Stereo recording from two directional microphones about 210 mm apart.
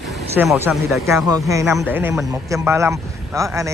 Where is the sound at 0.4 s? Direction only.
10° right (ahead or behind).